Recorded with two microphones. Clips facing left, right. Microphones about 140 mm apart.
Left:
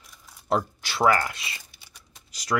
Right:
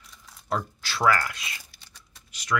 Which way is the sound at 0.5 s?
25° left (ahead or behind).